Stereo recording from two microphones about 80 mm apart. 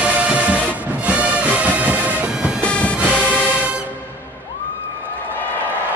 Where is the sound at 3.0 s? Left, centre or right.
Centre.